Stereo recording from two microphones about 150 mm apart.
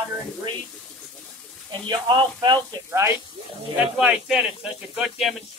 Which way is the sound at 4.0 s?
5° right (ahead or behind).